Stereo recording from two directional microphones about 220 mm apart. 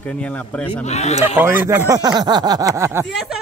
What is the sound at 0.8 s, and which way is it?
Speech, 30° left (ahead or behind).